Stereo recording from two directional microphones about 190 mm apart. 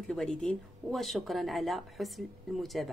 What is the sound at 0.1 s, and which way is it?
Speech, 5° left (ahead or behind).